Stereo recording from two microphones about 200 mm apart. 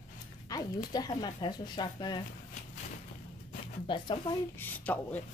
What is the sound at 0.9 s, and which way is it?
Speech, 20° left (ahead or behind).